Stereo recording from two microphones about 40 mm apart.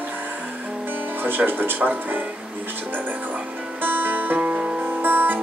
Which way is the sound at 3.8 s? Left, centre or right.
Right.